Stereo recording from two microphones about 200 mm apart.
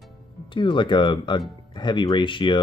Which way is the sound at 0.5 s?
25° left (ahead or behind).